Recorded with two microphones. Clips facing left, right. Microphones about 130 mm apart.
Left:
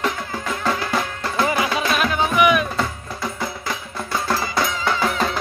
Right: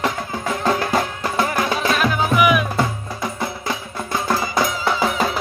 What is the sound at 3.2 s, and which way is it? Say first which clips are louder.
Music: right 1 dB; 20° right (ahead or behind).